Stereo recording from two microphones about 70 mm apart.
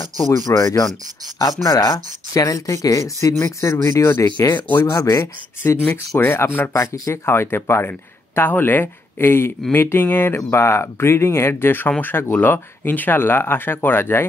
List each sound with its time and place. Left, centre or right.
0.5 s speech: left
4.4 s speech: left
4.8 s speech: left
5.2 s speech: left
6.7 s speech: left